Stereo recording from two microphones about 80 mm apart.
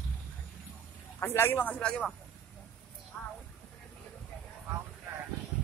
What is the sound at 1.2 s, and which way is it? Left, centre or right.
Speech, left.